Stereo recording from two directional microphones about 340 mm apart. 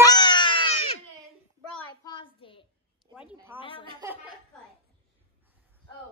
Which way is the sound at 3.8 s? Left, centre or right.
Centre.